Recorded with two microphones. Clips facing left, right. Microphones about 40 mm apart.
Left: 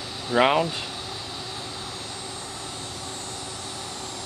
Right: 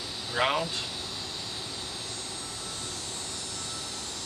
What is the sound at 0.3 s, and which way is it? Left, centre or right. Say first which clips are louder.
Speech: left 7 dB; left.